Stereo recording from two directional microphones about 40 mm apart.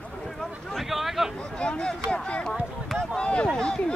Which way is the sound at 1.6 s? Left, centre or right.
Left.